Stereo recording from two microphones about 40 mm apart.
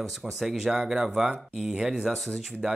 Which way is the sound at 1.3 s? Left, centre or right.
Right.